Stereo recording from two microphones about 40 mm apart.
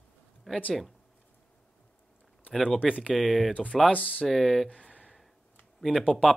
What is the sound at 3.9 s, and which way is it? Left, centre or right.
Speech, left.